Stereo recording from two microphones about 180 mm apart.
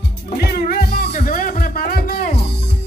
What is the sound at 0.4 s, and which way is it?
Music, 60° left (ahead or behind).